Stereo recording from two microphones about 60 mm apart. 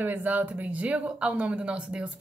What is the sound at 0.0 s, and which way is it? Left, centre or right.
Speech, right.